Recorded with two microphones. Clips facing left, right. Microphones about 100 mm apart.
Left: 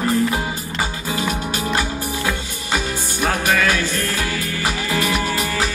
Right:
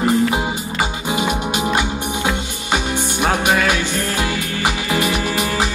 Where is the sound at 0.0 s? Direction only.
20° right (ahead or behind).